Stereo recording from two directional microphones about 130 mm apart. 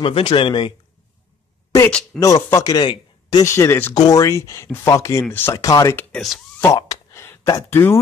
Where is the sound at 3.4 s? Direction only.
20° left (ahead or behind).